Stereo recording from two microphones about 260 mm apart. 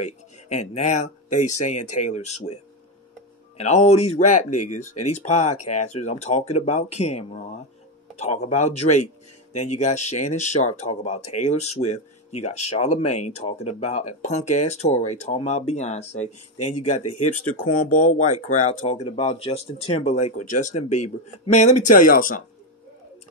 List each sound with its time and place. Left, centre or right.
0.0 s speech: left